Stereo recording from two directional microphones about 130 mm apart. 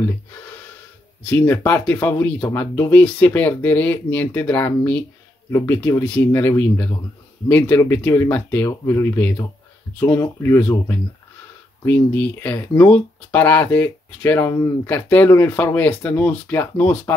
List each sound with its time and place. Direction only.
1.2 s speech: 10° left (ahead or behind)